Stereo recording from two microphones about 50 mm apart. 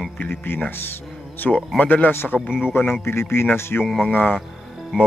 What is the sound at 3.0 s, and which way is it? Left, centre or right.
Speech, left.